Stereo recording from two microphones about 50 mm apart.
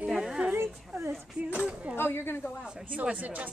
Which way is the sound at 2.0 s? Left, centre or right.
Left.